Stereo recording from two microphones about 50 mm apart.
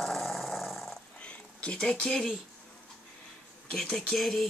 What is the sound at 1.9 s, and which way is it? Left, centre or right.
Speech, centre.